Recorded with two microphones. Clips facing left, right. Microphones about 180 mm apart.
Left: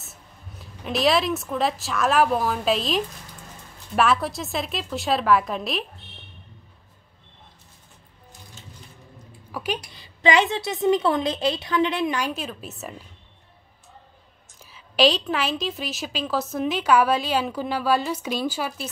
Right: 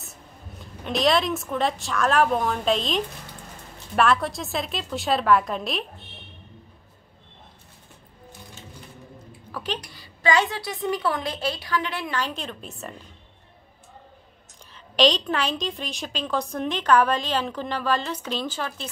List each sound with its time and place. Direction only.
0.0 s a woman's voice: centre (ahead or behind)
9.5 s a sound: 10° left (ahead or behind)
9.9 s a woman's voice: 20° left (ahead or behind); by 12.9 s 5° left (ahead or behind)
14.7 s a woman's voice: 5° left (ahead or behind)